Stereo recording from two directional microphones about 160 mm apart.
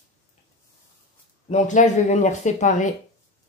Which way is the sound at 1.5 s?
50° left (ahead or behind).